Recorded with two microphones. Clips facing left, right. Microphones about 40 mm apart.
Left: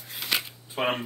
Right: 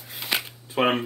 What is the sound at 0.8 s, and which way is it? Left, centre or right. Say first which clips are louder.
Speech: right 5 dB; right.